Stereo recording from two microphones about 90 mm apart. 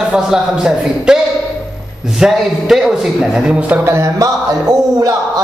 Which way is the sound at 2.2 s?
5° right (ahead or behind).